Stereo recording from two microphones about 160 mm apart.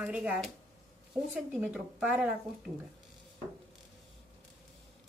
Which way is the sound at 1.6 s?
5° right (ahead or behind).